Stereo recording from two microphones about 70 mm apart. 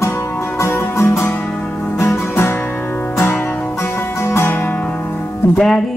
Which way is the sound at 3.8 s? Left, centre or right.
Left.